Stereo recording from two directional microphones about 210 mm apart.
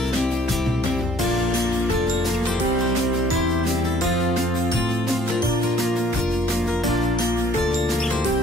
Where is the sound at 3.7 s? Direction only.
Centre (ahead or behind).